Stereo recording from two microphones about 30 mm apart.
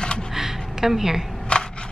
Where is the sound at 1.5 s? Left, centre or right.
Left.